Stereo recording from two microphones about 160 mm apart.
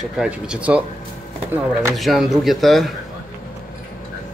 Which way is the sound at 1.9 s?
Centre (ahead or behind).